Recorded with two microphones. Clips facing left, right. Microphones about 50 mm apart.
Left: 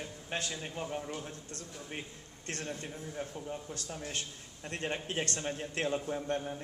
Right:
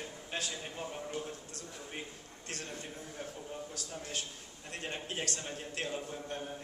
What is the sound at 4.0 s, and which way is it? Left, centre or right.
Speech, left.